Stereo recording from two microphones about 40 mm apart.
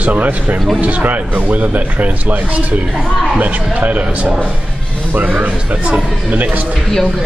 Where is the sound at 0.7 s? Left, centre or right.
Right.